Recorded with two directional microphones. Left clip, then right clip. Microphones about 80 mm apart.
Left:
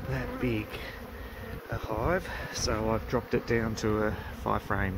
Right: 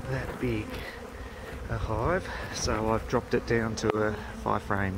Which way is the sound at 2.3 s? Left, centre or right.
Centre.